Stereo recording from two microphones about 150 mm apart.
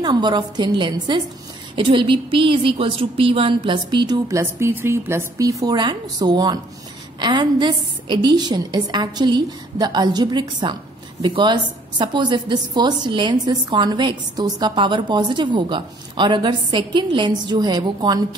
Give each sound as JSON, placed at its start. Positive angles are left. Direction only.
{"t": 0.0, "sound": "a woman's voice", "side_deg": -30}